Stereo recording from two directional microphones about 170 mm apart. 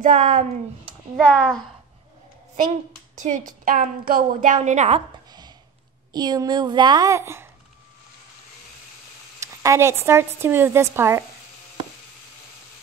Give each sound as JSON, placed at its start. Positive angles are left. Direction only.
{"t": 0.0, "sound": "a woman's voice", "side_deg": -50}
{"t": 1.1, "sound": "speech", "side_deg": 5}
{"t": 3.2, "sound": "a woman's voice", "side_deg": -50}
{"t": 6.1, "sound": "a woman's voice", "side_deg": -25}
{"t": 9.4, "sound": "speech", "side_deg": -20}